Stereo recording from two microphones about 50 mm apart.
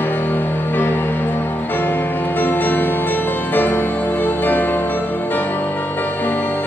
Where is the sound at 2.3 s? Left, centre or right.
Left.